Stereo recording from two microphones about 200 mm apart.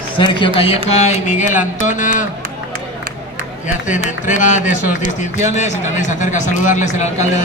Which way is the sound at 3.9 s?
40° left (ahead or behind).